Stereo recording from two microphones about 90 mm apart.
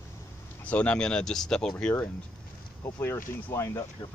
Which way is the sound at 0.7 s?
15° left (ahead or behind).